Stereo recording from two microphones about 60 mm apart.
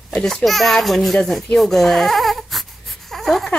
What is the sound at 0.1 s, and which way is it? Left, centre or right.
Speech, centre.